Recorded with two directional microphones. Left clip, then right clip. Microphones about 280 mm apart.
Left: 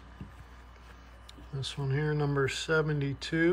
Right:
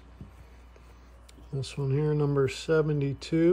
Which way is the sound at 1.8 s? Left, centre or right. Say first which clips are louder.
Right 4 dB; centre.